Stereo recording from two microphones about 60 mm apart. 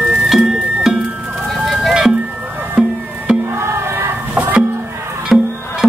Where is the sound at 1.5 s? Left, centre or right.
Centre.